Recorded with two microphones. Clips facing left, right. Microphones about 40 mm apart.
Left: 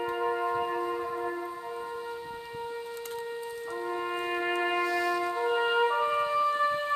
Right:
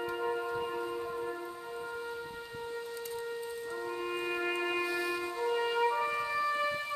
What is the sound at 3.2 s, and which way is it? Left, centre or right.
Music, centre.